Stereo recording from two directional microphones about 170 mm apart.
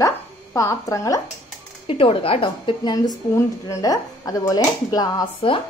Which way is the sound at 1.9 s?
35° left (ahead or behind).